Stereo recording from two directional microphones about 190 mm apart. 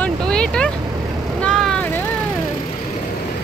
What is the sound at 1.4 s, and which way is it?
Vehicle, 5° left (ahead or behind).